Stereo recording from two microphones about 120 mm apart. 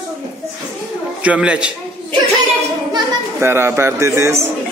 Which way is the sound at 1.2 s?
10° right (ahead or behind).